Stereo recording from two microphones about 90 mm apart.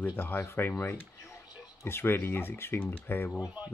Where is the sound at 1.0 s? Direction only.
25° left (ahead or behind).